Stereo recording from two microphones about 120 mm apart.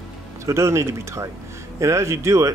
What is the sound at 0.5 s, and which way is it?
Speech, 25° right (ahead or behind).